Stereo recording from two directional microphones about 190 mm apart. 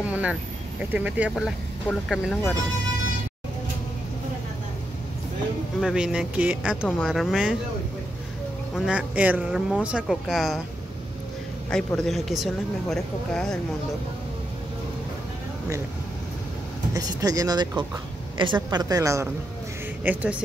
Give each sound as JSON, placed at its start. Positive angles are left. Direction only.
{"t": 0.1, "sound": "speech", "side_deg": -5}
{"t": 5.8, "sound": "speech", "side_deg": 0}
{"t": 8.7, "sound": "speech", "side_deg": -5}
{"t": 11.7, "sound": "speech", "side_deg": 5}
{"t": 16.9, "sound": "speech", "side_deg": -20}